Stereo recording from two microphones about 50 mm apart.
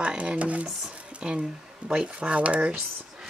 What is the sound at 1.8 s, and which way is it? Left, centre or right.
Speech, right.